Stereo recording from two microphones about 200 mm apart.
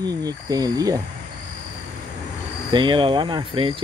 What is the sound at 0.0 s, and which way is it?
Speech, 20° right (ahead or behind).